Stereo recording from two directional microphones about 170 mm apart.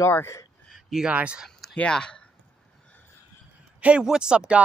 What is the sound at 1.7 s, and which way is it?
Speech, 5° left (ahead or behind).